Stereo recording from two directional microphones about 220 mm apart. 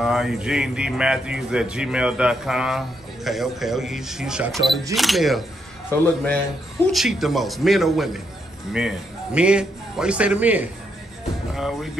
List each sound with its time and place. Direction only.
0.0 s a man's voice: centre (ahead or behind)
11.5 s music: centre (ahead or behind)